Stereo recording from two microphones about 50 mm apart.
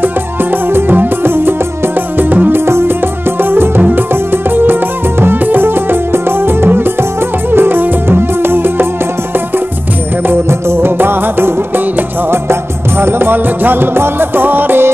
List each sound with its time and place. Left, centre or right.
0.7 s music: right
2.1 s music: right
2.5 s music: right
3.4 s music: right
10.7 s music: right
13.0 s music: right